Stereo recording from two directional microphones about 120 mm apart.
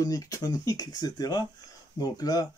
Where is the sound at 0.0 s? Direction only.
30° left (ahead or behind).